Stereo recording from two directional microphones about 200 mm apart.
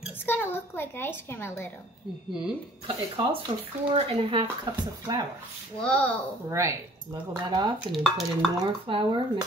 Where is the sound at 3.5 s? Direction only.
25° right (ahead or behind).